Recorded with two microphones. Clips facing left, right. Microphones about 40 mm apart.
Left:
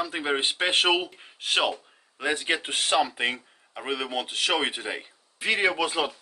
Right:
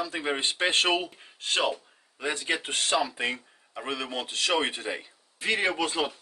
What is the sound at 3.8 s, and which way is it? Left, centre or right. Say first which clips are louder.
A man's voice: left 3 dB; left.